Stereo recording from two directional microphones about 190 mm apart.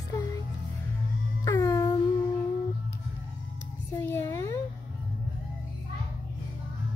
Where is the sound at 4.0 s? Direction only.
15° left (ahead or behind).